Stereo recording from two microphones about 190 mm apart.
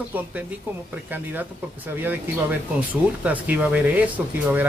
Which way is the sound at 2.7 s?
10° right (ahead or behind).